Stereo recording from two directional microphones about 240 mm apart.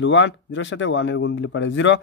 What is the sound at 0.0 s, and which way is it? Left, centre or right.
A man's voice, left.